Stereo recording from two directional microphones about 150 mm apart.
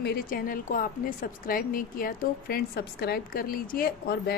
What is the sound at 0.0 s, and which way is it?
Speech, 80° left.